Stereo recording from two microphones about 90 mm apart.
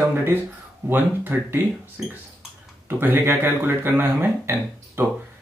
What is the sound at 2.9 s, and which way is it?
Speech, 20° right (ahead or behind).